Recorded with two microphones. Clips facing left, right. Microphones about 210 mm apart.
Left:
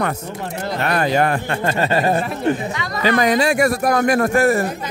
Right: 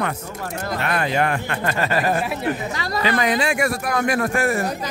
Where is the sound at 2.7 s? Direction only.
35° right (ahead or behind).